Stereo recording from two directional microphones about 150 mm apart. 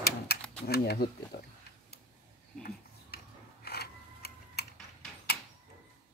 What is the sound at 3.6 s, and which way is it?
Mechanisms, 90° left.